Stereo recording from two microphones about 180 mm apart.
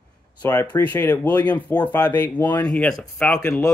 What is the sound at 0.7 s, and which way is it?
Speech, 10° left (ahead or behind).